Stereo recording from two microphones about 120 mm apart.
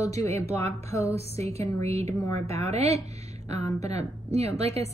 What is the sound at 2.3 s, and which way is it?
A woman's voice, 60° right (ahead or behind).